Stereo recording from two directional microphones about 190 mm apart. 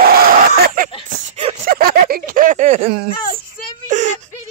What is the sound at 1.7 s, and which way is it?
Speech, 50° right (ahead or behind).